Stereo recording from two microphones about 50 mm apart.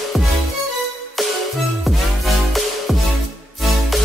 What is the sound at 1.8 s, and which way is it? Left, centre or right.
Music, centre.